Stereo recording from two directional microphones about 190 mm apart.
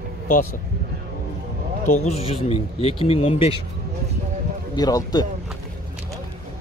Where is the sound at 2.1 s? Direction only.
30° left (ahead or behind).